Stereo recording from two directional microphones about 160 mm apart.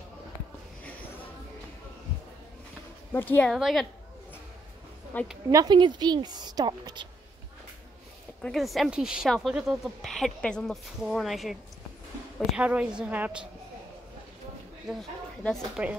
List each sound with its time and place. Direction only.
3.1 s a woman's voice: 10° left (ahead or behind)
3.5 s speech: centre (ahead or behind)
5.1 s a woman's voice: 10° left (ahead or behind)
5.5 s a woman's voice: 25° right (ahead or behind)
8.4 s speech: centre (ahead or behind)
12.5 s a woman's voice: 5° right (ahead or behind)
14.9 s speech: centre (ahead or behind)